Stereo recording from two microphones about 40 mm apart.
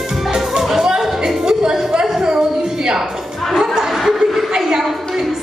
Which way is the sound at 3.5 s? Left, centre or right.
Centre.